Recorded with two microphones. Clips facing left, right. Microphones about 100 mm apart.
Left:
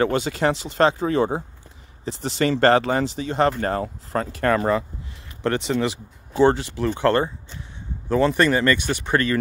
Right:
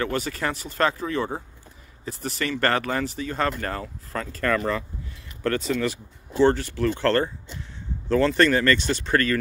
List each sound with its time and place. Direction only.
0.0 s speech: 25° left (ahead or behind)